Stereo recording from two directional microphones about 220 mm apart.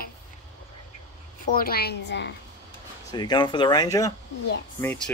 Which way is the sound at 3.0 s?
20° left (ahead or behind).